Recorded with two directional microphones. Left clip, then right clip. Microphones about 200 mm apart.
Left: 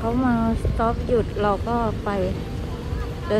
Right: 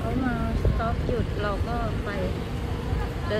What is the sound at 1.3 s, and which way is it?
Speech, centre (ahead or behind).